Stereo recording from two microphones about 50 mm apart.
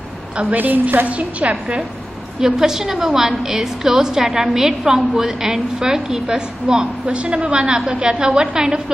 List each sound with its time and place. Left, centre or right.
0.6 s a woman's voice: right
2.4 s a woman's voice: centre